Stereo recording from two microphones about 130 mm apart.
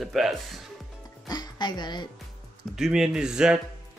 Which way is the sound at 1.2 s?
30° left (ahead or behind).